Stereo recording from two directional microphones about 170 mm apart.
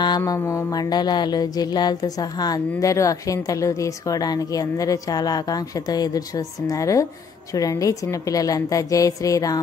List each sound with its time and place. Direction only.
0.0 s mantra: 25° left (ahead or behind)